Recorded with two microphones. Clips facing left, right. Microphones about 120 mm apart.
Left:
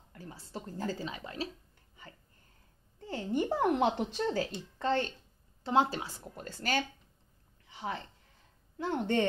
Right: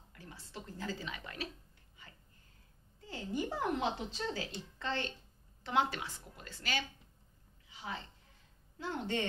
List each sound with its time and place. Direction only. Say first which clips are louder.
0.1 s speech: left 6 dB; 35° left (ahead or behind)
3.1 s speech: left 6 dB; 55° left (ahead or behind)
5.6 s speech: left 5 dB; 30° left (ahead or behind)
7.6 s a sound: left 8 dB; 55° left (ahead or behind)
8.7 s speech: left 7 dB; 55° left (ahead or behind)